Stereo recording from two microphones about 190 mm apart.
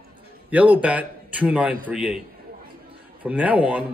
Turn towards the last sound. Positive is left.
turn(degrees=-5)  # may be behind; listen again after turning